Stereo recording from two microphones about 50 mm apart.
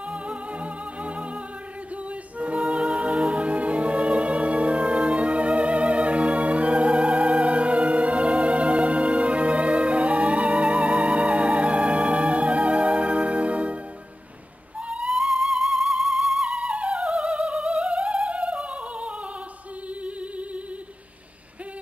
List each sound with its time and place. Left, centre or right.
0.1 s music: right
2.3 s a capella: right
2.7 s music: right
15.0 s music: centre
16.4 s music: right